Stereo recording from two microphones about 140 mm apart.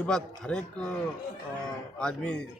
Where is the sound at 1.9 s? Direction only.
5° left (ahead or behind).